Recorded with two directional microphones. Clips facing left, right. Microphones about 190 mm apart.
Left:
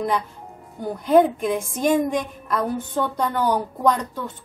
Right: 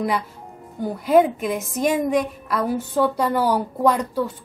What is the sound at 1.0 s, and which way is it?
Speech, 5° right (ahead or behind).